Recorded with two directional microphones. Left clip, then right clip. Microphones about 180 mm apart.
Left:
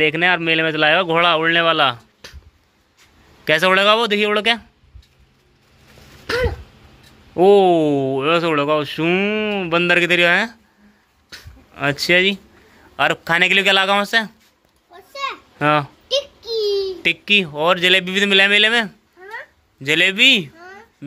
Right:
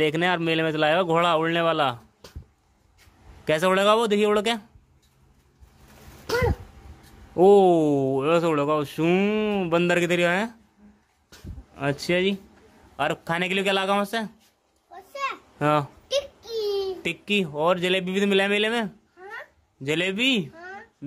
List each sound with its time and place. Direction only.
0.0 s speech: 10° right (ahead or behind)
3.4 s speech: 10° right (ahead or behind)
7.3 s speech: centre (ahead or behind)
11.2 s a sound: 5° right (ahead or behind)
12.9 s speech: centre (ahead or behind)
15.6 s speech: centre (ahead or behind)
16.3 s a sound: 40° right (ahead or behind)
16.6 s a sound: 15° right (ahead or behind)
17.1 s speech: 5° right (ahead or behind)